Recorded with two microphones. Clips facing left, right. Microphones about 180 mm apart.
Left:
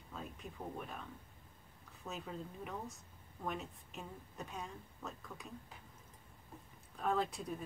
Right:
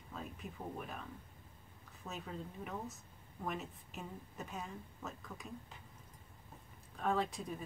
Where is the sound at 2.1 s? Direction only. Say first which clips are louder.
Even; centre (ahead or behind).